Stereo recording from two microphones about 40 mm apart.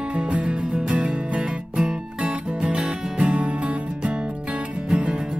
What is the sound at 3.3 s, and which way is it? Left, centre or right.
Music, right.